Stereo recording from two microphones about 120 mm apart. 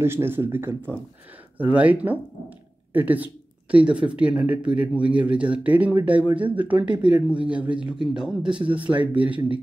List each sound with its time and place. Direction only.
0.0 s speech: 20° right (ahead or behind)